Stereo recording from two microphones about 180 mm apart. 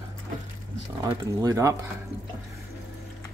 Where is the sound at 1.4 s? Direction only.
15° right (ahead or behind).